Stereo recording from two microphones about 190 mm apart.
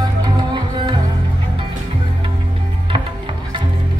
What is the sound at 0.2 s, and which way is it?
Music, 25° right (ahead or behind).